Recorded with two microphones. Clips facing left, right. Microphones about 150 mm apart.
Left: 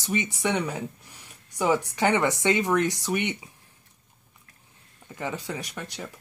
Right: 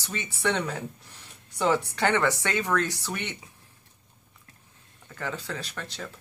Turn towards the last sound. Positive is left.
turn(degrees=15)  # may be behind; listen again after turning